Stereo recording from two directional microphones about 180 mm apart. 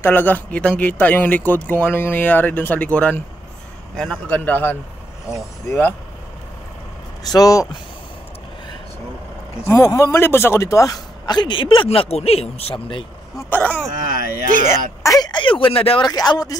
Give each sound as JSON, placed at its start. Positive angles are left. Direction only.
{"t": 0.0, "sound": "speech", "side_deg": 10}
{"t": 7.3, "sound": "a man's voice", "side_deg": 20}
{"t": 9.7, "sound": "a man's voice", "side_deg": 15}
{"t": 13.5, "sound": "speech", "side_deg": 10}
{"t": 14.5, "sound": "speech", "side_deg": -40}
{"t": 15.0, "sound": "a man's voice", "side_deg": 20}